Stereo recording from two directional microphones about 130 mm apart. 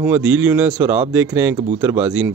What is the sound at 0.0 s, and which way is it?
Speech, 10° right (ahead or behind).